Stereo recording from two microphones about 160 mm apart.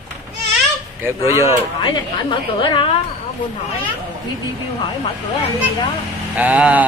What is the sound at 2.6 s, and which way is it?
Speech, 30° left (ahead or behind).